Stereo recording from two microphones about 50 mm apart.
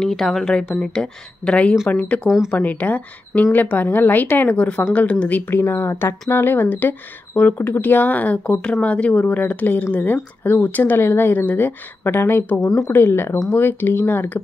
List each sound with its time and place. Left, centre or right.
0.0 s speech: centre; by 2.2 s left
2.2 s speech: centre
2.5 s speech: left
5.5 s speech: left
8.5 s speech: left